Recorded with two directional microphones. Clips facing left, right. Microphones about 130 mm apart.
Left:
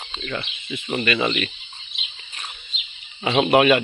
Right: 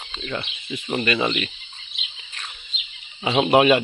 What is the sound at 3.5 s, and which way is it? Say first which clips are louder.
Speech: right 1 dB; 25° right (ahead or behind).